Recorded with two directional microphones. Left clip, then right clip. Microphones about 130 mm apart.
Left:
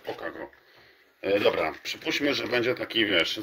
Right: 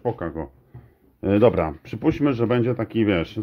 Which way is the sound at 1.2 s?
20° right (ahead or behind).